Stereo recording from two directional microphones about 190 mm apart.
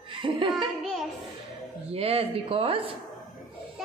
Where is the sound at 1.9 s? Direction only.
30° right (ahead or behind).